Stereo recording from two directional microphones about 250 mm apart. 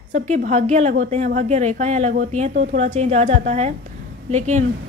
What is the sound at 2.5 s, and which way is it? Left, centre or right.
Speech, right.